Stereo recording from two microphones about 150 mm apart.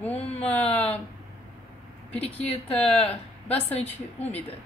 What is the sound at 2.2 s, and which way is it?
Speech, 40° left (ahead or behind).